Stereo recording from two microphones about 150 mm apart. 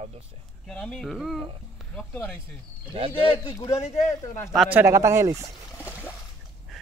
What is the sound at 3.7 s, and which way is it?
Speech, 45° left (ahead or behind).